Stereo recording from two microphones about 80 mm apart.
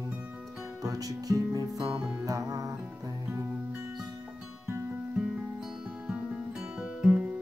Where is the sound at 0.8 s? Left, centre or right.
Right.